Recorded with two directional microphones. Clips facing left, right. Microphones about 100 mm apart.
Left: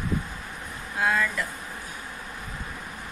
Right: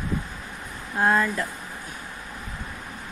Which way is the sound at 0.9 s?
35° right (ahead or behind).